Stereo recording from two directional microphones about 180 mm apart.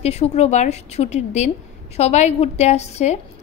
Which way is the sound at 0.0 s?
35° left (ahead or behind).